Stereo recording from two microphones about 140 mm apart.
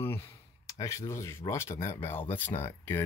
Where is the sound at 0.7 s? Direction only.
20° left (ahead or behind).